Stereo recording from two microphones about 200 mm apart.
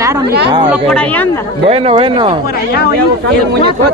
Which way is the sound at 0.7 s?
5° left (ahead or behind).